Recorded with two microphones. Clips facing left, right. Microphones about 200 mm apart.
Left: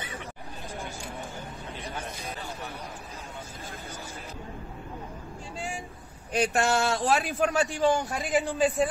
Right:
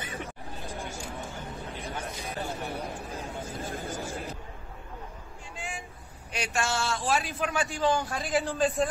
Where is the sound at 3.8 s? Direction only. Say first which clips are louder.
Right 6 dB; 50° right (ahead or behind).